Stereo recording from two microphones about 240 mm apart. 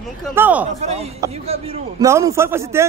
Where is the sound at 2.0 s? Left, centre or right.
Centre.